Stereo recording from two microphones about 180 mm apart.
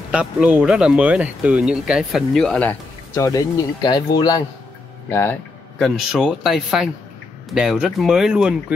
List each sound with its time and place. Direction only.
0.1 s speech: 5° right (ahead or behind)
3.2 s speech: 20° left (ahead or behind)
5.8 s speech: centre (ahead or behind)